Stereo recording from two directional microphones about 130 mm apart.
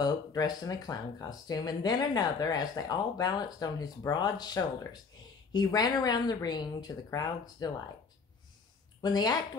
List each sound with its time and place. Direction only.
0.0 s speech: 30° left (ahead or behind)
9.0 s speech: 30° left (ahead or behind)